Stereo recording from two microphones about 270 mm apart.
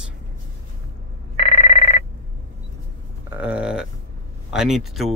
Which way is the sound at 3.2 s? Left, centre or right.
Centre.